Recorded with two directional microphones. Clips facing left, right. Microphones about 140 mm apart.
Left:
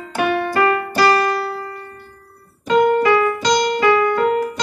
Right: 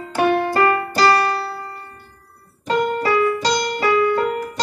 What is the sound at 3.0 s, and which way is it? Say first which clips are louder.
Music: left 2 dB; 35° right (ahead or behind).